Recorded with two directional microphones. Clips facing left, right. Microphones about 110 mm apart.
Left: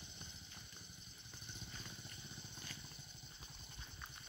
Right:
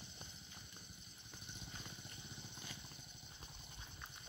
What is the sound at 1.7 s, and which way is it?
Vehicle, 15° right (ahead or behind).